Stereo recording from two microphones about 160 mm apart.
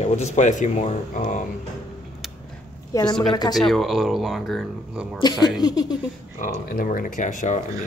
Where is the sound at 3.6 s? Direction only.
Centre (ahead or behind).